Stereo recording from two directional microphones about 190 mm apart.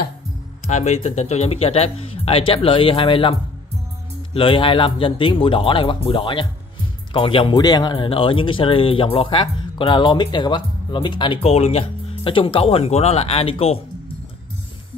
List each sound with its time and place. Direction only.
0.7 s speech: 35° left (ahead or behind)